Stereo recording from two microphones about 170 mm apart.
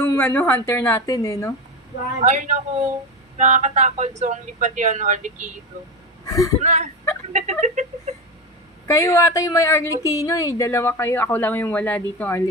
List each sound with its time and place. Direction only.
0.0 s a woman's voice: 15° left (ahead or behind)
2.2 s speech: 45° right (ahead or behind)
6.2 s speech: 20° left (ahead or behind)
6.6 s speech: 45° right (ahead or behind)
8.8 s a woman's voice: 15° left (ahead or behind)